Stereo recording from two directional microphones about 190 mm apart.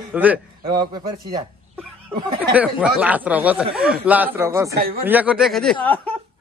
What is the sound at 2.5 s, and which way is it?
Speech, 5° right (ahead or behind).